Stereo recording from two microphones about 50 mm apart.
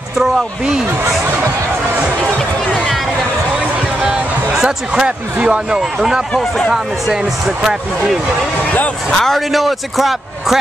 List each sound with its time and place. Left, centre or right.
0.2 s speech: centre
4.1 s speech: centre
5.8 s speech: centre
9.1 s a man's voice: centre
9.5 s a man's voice: centre